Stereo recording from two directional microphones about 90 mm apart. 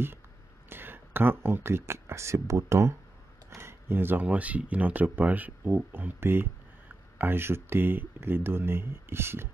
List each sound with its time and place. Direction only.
0.7 s speech: 25° right (ahead or behind)